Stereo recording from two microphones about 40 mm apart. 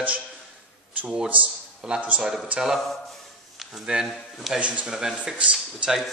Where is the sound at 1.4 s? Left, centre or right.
Right.